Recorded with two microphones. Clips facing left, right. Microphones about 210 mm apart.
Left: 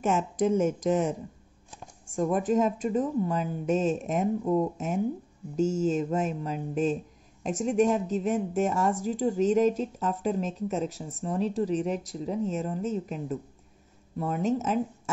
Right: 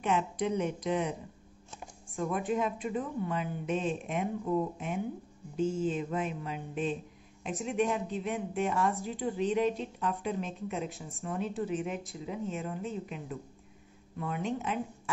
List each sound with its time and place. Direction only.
0.0 s speech: 45° left (ahead or behind)
2.1 s a woman's voice: 45° left (ahead or behind)